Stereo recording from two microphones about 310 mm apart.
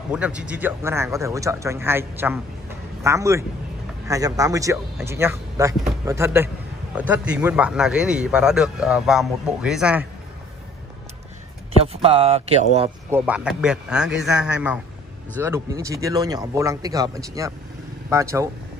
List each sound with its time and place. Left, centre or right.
0.1 s a man's voice: centre
11.7 s speech: centre
13.1 s a man's voice: centre